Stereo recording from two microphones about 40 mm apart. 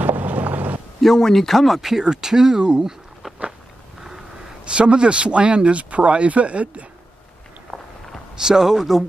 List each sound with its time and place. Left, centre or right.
0.0 s vehicle: right
1.0 s speech: centre
1.8 s speech: centre
2.8 s a sound: centre
4.6 s speech: right
8.4 s speech: centre